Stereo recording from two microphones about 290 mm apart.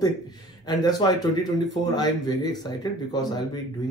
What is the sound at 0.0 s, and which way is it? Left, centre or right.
Speech, centre.